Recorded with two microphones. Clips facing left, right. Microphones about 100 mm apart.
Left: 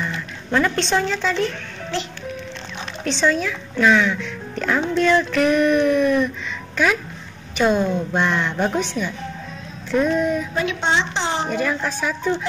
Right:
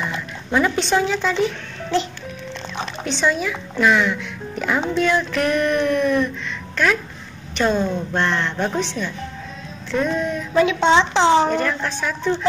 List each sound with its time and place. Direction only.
0.5 s a woman's voice: 5° right (ahead or behind)
3.0 s speech: centre (ahead or behind)
11.1 s a woman's voice: 90° right
11.5 s speech: 5° left (ahead or behind)